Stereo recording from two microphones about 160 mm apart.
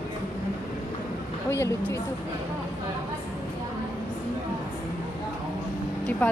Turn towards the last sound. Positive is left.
turn(degrees=10)  # may be behind; listen again after turning